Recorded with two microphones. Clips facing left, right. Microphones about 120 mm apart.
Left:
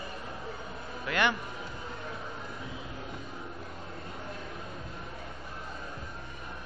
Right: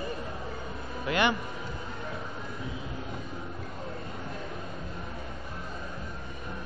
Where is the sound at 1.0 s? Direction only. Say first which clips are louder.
Right 2 dB; 10° right (ahead or behind).